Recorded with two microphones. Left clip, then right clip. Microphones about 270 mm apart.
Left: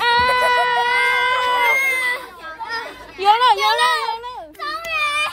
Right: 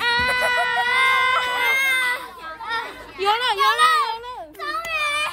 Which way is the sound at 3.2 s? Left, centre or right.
Centre.